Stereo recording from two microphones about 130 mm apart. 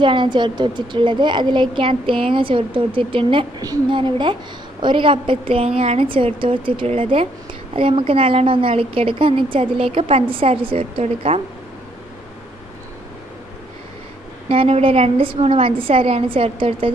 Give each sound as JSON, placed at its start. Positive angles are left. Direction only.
{"t": 0.0, "sound": "a woman's voice", "side_deg": -40}
{"t": 14.5, "sound": "a woman's voice", "side_deg": -45}